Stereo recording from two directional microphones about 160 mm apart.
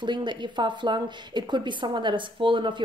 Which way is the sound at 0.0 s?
30° right (ahead or behind).